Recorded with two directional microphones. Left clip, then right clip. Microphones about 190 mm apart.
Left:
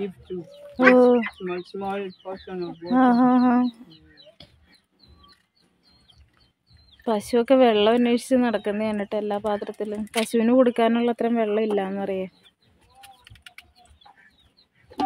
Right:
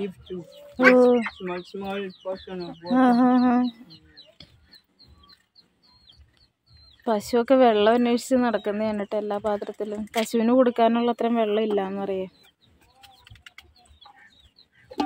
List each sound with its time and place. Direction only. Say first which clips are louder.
0.9 s a woman's voice: left 1 dB; 10° left (ahead or behind)
7.1 s a woman's voice: left 1 dB; 5° right (ahead or behind)
13.0 s bird: left 2 dB; 40° left (ahead or behind)